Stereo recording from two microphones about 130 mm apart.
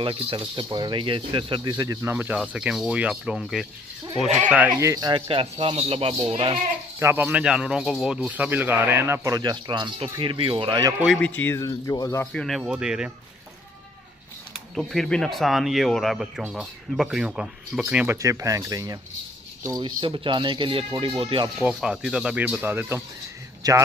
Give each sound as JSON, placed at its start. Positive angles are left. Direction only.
{"t": 0.0, "sound": "speech", "side_deg": -40}
{"t": 2.5, "sound": "speech", "side_deg": -5}
{"t": 4.7, "sound": "speech", "side_deg": -25}
{"t": 5.3, "sound": "speech", "side_deg": -45}
{"t": 7.0, "sound": "speech", "side_deg": -15}
{"t": 10.7, "sound": "speech", "side_deg": -30}
{"t": 11.1, "sound": "speech", "side_deg": 10}
{"t": 11.6, "sound": "speech", "side_deg": 25}
{"t": 12.3, "sound": "speech", "side_deg": 5}
{"t": 14.8, "sound": "speech", "side_deg": 0}
{"t": 20.0, "sound": "speech", "side_deg": -40}
{"t": 21.5, "sound": "speech", "side_deg": -5}
{"t": 23.6, "sound": "speech", "side_deg": -30}